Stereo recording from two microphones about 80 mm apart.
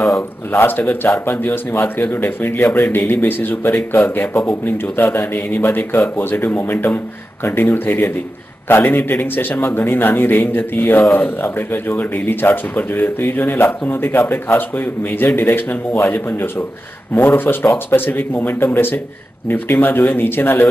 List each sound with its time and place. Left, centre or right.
0.5 s a man's voice: left